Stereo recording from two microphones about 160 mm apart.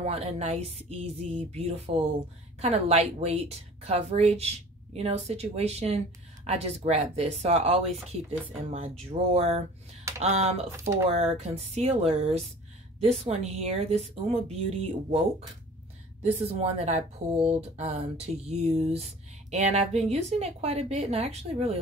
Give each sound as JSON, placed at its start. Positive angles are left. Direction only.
{"t": 0.0, "sound": "speech", "side_deg": -40}
{"t": 16.2, "sound": "speech", "side_deg": -40}